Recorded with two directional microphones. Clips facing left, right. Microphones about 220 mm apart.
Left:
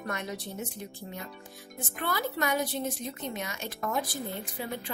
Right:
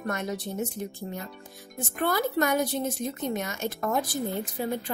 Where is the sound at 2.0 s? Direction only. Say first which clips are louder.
Right 6 dB; 45° right (ahead or behind).